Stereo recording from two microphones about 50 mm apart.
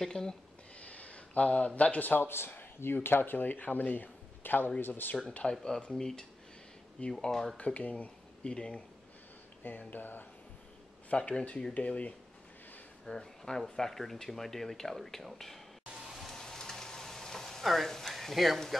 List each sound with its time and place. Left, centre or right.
0.0 s speech: centre
0.7 s a sound: left
1.8 s speech: left
5.3 s speech: centre
7.2 s speech: centre
7.5 s speech: left
9.6 s speech: left
11.1 s speech: left
11.7 s speech: left
13.0 s speech: centre
16.1 s frying: centre